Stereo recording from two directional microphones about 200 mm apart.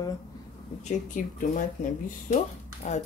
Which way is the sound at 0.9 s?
40° left (ahead or behind).